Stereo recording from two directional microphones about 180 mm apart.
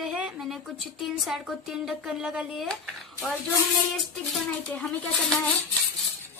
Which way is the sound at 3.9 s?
5° left (ahead or behind).